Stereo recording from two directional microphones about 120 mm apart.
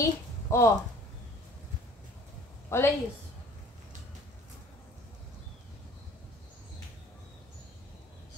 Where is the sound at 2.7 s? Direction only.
25° left (ahead or behind).